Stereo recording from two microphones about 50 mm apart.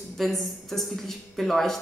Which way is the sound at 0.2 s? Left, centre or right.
Centre.